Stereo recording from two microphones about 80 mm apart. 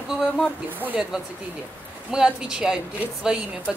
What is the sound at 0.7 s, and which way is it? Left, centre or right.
Speech, right.